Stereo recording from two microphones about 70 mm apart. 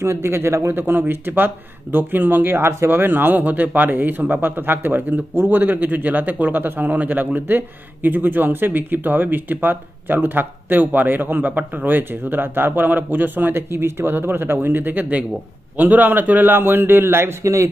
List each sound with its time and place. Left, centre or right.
0.0 s a man's voice: right
0.7 s a man's voice: right